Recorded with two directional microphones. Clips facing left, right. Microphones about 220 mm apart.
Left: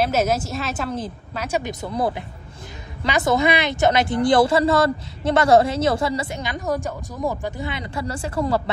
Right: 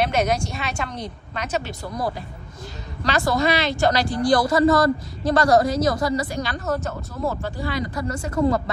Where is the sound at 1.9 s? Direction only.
25° left (ahead or behind).